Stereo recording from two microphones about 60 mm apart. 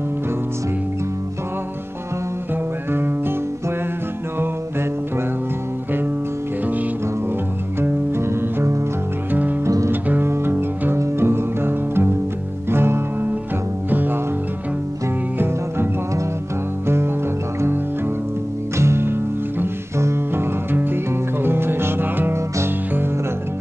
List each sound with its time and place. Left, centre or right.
2.9 s music: right
7.8 s music: right
9.3 s music: right
10.2 s music: right
15.3 s music: right
18.8 s music: right
20.7 s music: right